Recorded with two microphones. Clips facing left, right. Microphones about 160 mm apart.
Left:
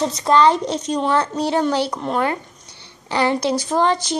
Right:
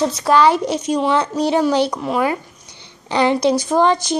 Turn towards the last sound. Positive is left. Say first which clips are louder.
# right 3 dB
turn(degrees=-15)  # may be behind; listen again after turning